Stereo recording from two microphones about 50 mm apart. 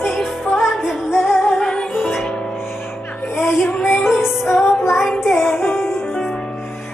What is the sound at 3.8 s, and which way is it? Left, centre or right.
Music, left.